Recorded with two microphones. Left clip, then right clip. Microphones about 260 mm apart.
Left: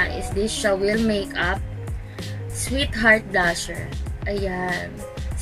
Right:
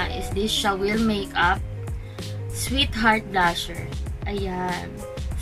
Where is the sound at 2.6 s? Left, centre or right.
Centre.